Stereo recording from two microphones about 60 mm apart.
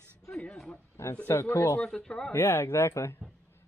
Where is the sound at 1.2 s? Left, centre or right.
Left.